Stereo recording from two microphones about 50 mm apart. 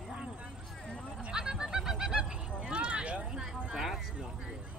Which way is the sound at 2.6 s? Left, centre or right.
Centre.